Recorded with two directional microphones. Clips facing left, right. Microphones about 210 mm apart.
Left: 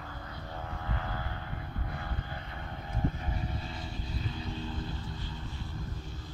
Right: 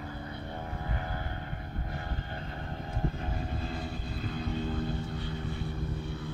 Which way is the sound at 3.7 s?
55° right (ahead or behind).